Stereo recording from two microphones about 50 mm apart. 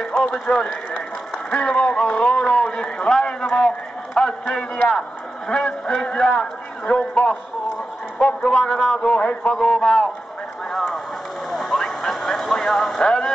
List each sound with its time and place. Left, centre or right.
0.0 s a man's voice: centre
3.5 s a sound: centre
4.3 s a man's voice: centre
8.4 s a man's voice: centre
10.7 s a sound: centre
11.5 s vehicle: centre